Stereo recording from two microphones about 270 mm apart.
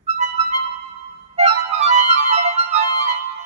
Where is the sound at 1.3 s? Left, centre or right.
Right.